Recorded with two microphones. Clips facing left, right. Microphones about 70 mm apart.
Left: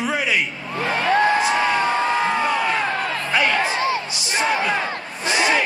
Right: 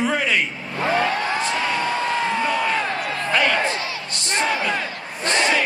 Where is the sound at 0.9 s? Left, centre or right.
Left.